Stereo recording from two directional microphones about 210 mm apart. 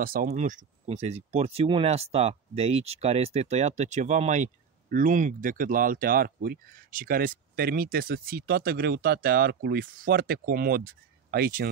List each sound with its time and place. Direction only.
0.0 s speech: 40° right (ahead or behind)